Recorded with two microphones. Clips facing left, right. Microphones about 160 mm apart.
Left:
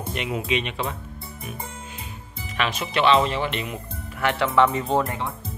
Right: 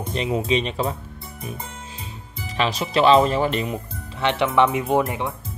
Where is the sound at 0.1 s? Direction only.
30° right (ahead or behind).